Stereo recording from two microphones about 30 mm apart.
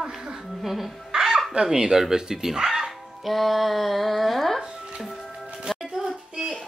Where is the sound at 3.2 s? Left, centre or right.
Centre.